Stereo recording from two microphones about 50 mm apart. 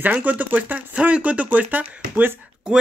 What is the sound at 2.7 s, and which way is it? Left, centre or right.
Speech, centre.